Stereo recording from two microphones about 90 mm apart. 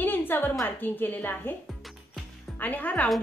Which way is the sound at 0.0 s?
20° left (ahead or behind).